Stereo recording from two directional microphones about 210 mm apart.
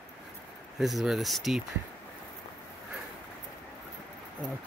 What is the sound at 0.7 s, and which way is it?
Speech, centre (ahead or behind).